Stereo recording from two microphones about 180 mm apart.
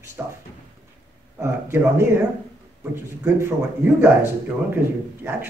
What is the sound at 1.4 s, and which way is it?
A man's voice, 15° right (ahead or behind).